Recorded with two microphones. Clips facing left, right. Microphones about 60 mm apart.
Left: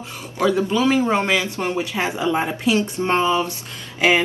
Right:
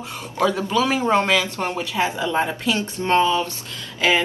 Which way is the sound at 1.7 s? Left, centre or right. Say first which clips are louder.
Even; left.